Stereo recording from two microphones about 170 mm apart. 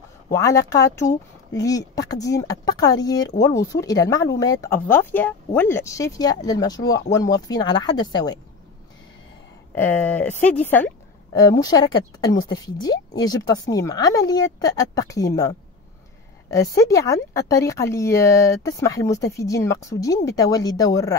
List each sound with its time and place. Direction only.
0.3 s speech: 20° left (ahead or behind)
9.8 s speech: 10° left (ahead or behind)
11.5 s speech: 25° left (ahead or behind)